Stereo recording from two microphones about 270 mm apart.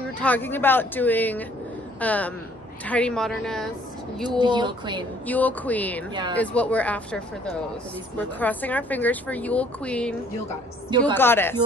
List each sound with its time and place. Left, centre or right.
0.2 s speech: centre
4.4 s speech: centre
5.2 s speech: centre
11.1 s speech: centre